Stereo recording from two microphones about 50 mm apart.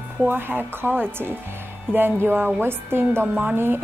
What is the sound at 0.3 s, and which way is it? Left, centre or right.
Music, right.